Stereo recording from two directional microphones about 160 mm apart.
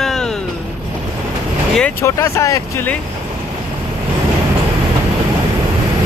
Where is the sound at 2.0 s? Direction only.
20° left (ahead or behind).